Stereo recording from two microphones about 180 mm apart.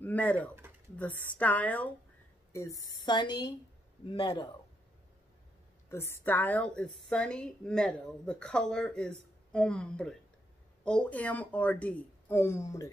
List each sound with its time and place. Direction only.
0.0 s a woman's voice: 10° left (ahead or behind)
5.9 s a woman's voice: 15° left (ahead or behind)